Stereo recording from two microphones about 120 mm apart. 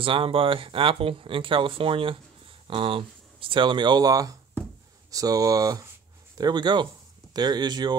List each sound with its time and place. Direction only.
0.0 s speech: 50° right (ahead or behind)